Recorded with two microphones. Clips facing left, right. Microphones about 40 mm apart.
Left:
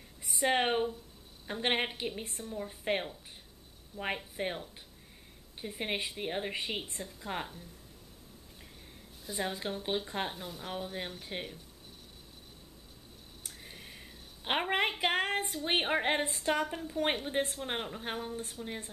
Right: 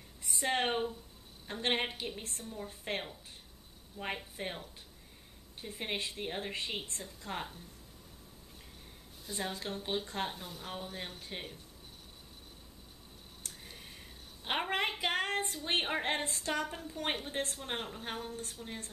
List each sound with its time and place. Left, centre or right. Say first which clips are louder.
0.2 s a woman's voice: left 3 dB; centre
9.2 s a woman's voice: left 3 dB; centre
13.5 s a sound: left 2 dB; centre
15.6 s a woman's voice: left 5 dB; centre